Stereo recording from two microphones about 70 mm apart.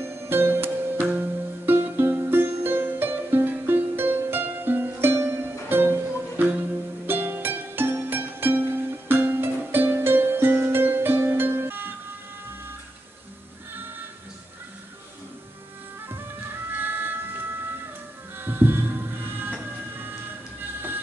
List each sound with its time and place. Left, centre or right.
0.0 s music: right
16.7 s music: right
18.4 s a sound: right
20.0 s music: right